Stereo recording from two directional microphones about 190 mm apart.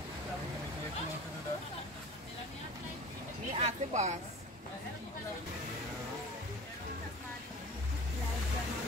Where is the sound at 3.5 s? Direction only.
35° right (ahead or behind).